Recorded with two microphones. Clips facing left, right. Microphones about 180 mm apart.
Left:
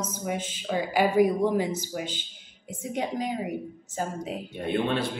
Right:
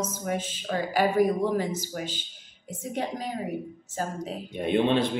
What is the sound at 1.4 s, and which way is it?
Speech, 15° left (ahead or behind).